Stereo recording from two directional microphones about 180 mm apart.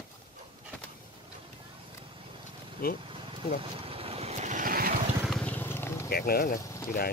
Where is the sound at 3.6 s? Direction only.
30° right (ahead or behind); by 4.9 s 50° right (ahead or behind).